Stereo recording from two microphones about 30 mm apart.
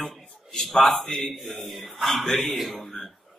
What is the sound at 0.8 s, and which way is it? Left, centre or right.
Speech, centre.